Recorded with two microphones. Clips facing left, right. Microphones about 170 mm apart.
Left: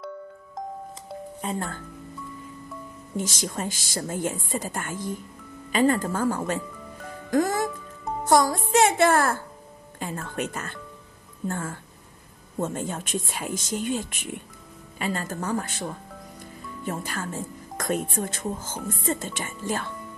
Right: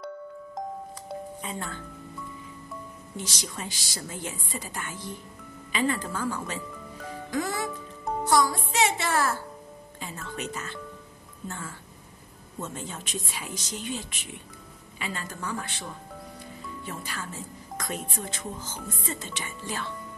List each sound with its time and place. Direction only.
1.4 s a woman's voice: 45° left (ahead or behind)
3.2 s a woman's voice: 50° left (ahead or behind)
7.2 s music: 45° left (ahead or behind)
8.3 s a woman's voice: 50° left (ahead or behind)